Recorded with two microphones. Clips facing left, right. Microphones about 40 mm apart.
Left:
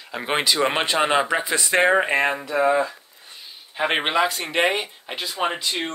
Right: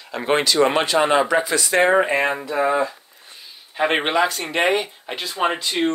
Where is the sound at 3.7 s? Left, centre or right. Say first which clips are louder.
Right 2 dB; centre.